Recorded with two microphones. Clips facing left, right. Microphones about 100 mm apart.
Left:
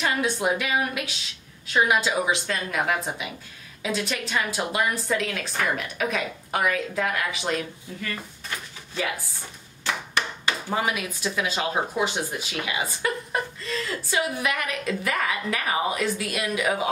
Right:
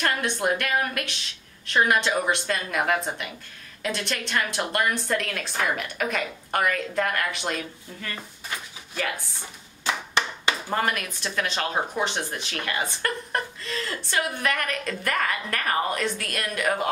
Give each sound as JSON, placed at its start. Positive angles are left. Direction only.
{"t": 0.0, "sound": "a woman's voice", "side_deg": 5}
{"t": 9.8, "sound": "clapping", "side_deg": -20}
{"t": 10.7, "sound": "speech", "side_deg": 5}